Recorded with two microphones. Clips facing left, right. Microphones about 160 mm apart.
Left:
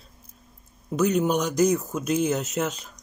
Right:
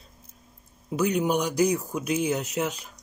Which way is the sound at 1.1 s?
10° right (ahead or behind).